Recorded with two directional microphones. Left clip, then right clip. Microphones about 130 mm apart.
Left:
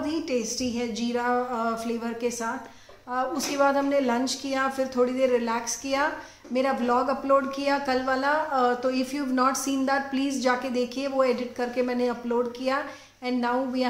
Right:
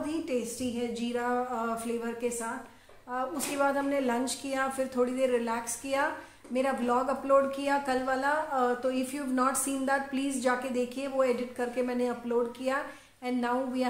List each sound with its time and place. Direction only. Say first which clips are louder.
0.0 s speech: left 4 dB; 10° left (ahead or behind)
3.1 s a woman's voice: left 5 dB; 10° left (ahead or behind)